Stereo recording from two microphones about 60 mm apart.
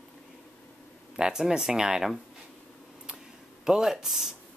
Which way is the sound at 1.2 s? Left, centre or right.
Centre.